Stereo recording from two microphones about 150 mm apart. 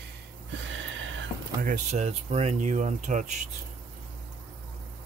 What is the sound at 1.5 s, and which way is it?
Speech, 70° right (ahead or behind).